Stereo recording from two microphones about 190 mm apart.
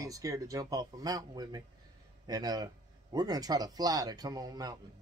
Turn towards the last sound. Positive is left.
turn(degrees=-20)  # may be behind; listen again after turning